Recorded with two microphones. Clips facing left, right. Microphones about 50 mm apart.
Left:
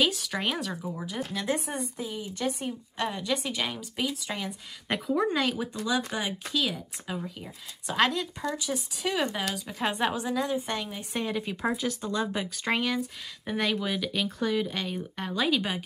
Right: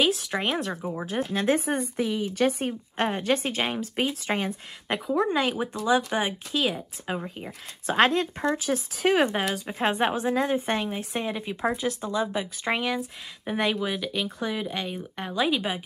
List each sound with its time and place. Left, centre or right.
0.0 s speech: centre
1.0 s speech: right
4.8 s speech: centre
5.3 s a woman's voice: right
9.7 s a woman's voice: right
11.0 s speech: centre
12.1 s speech: centre